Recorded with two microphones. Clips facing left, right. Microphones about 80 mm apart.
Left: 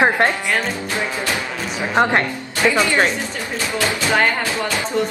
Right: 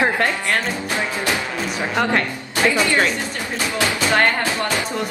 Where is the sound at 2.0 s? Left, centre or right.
Left.